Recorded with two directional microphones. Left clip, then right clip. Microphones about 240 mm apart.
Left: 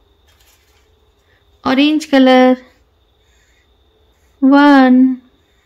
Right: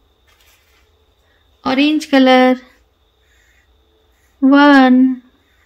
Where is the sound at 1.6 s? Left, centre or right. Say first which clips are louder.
Left 1 dB; left; by 2.7 s centre.